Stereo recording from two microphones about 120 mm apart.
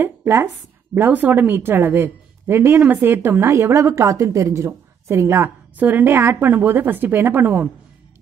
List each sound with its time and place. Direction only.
0.0 s a woman's voice: 20° right (ahead or behind)